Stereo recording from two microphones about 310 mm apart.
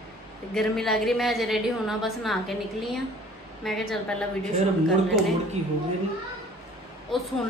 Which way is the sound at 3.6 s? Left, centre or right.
Centre.